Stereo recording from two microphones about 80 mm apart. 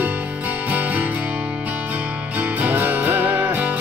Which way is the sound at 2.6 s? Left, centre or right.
Right.